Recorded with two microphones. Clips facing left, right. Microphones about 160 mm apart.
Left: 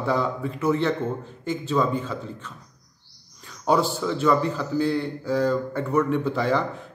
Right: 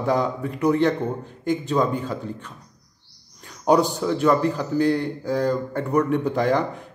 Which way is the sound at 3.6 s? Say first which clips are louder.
Right 3 dB; 15° right (ahead or behind).